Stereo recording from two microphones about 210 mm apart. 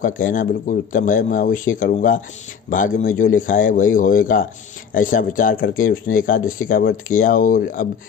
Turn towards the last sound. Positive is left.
turn(degrees=40)  # may be behind; listen again after turning